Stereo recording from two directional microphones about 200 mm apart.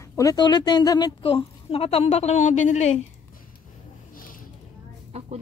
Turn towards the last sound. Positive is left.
turn(degrees=-30)  # may be behind; listen again after turning